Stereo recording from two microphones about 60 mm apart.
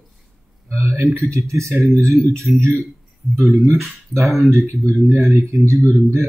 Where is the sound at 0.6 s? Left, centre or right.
Right.